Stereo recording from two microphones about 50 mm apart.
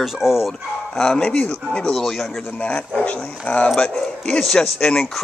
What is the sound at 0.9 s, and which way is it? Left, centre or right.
Speech, centre.